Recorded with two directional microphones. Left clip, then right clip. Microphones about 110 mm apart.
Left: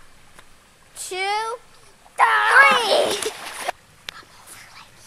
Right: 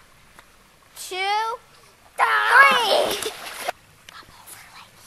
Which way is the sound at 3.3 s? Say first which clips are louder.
Left 2 dB; 15° right (ahead or behind).